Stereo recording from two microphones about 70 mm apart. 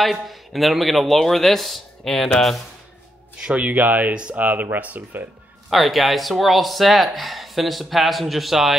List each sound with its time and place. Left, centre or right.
0.0 s speech: centre
3.4 s speech: centre
4.1 s speech: centre
4.5 s speech: right
5.7 s speech: centre